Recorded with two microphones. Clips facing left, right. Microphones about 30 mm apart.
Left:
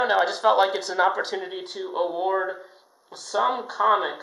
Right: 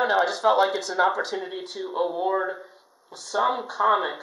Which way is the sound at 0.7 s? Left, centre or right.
Centre.